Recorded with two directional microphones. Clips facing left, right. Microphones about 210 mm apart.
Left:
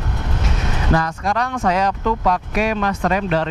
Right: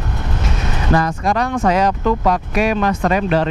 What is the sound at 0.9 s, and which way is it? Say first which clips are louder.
Speech: right 3 dB; 10° right (ahead or behind).